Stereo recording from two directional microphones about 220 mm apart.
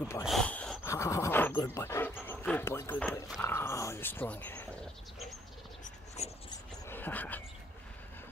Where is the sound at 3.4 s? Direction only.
10° left (ahead or behind).